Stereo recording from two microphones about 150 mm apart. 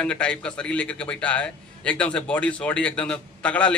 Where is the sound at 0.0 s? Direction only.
5° left (ahead or behind).